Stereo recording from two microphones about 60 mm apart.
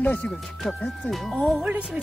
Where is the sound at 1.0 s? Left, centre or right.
Centre.